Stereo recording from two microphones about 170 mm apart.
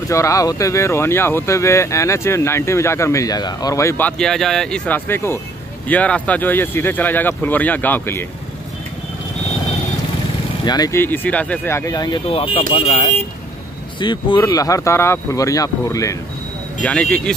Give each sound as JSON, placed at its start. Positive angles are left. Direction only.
{"t": 0.1, "sound": "speech", "side_deg": 20}
{"t": 10.6, "sound": "speech", "side_deg": 25}
{"t": 13.9, "sound": "speech", "side_deg": 25}
{"t": 16.8, "sound": "speech", "side_deg": 10}